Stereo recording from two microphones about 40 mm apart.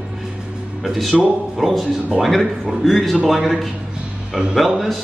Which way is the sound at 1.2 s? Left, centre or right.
Centre.